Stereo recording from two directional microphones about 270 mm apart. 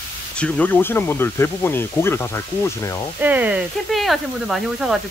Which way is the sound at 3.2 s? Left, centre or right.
Centre.